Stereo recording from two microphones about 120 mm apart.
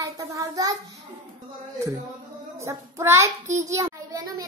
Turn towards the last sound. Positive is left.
turn(degrees=-30)  # may be behind; listen again after turning